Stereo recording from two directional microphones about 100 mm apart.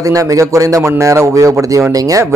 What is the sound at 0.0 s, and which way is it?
A man's voice, 35° right (ahead or behind).